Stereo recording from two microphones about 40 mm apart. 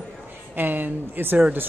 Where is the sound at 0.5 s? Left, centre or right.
Right.